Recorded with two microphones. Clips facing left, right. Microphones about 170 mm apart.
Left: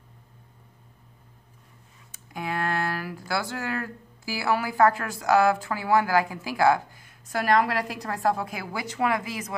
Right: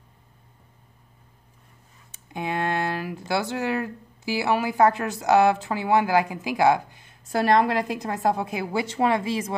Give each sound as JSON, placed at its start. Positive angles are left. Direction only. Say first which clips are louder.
{"t": 2.2, "sound": "speech", "louder": "right 2 dB", "side_deg": -20}